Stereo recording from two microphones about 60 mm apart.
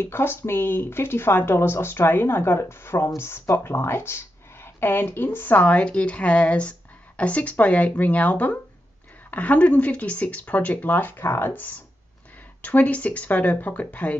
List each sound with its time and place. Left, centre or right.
0.0 s speech: left